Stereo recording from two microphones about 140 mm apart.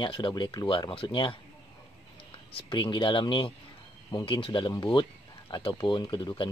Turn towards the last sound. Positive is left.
turn(degrees=35)  # may be behind; listen again after turning